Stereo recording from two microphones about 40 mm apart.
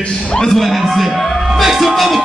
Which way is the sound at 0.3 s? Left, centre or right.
Centre.